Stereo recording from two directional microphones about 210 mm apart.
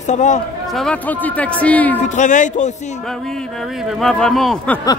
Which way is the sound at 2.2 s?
35° left (ahead or behind).